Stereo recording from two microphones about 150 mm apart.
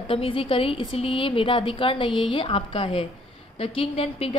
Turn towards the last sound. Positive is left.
turn(degrees=40)  # may be behind; listen again after turning